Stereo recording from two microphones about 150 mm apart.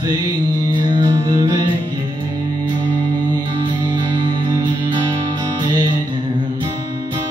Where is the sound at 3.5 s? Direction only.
30° right (ahead or behind).